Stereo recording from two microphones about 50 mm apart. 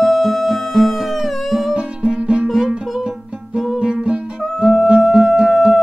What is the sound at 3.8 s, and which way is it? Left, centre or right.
Music, centre.